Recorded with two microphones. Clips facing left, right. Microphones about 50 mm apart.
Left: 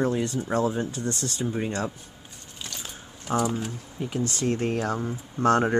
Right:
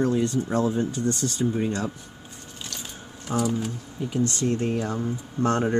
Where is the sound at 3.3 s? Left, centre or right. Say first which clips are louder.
Even; centre.